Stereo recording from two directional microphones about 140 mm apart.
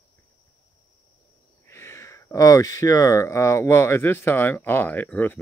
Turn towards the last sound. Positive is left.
turn(degrees=10)  # may be behind; listen again after turning